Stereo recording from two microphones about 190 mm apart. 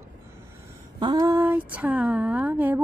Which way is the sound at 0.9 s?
20° right (ahead or behind).